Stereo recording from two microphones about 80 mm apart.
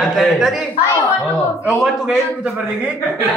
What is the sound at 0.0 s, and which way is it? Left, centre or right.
Speech, centre.